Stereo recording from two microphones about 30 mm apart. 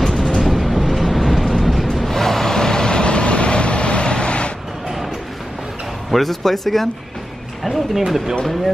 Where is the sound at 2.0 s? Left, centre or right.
Centre; by 4.5 s left.